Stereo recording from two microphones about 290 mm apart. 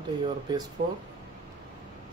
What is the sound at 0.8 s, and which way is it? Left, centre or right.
Speech, right.